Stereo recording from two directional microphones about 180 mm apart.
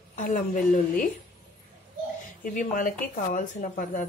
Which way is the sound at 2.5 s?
45° left (ahead or behind).